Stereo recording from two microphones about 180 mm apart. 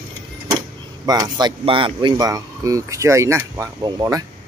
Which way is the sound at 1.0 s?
20° right (ahead or behind).